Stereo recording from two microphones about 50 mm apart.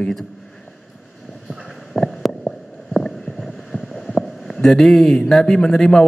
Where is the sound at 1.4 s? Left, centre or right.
Centre.